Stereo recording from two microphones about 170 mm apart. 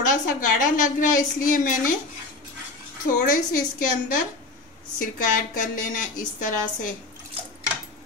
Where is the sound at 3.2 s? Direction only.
50° left (ahead or behind).